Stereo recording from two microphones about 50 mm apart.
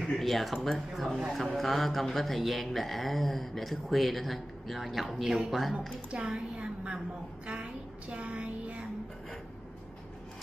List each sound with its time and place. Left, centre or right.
0.2 s speech: centre
6.0 s a woman's voice: centre